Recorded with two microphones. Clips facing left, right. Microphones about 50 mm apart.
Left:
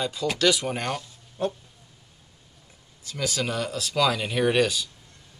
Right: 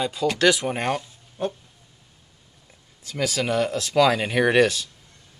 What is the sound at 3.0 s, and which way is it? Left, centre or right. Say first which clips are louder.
Speech: right 4 dB; right.